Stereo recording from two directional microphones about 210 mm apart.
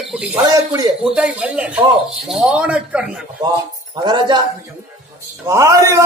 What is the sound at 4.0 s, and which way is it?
Speech, 20° right (ahead or behind).